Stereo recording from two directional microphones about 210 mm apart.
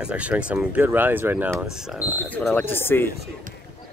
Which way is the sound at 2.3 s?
10° left (ahead or behind).